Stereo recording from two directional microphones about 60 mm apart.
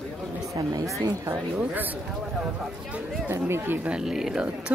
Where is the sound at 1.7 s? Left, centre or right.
Right.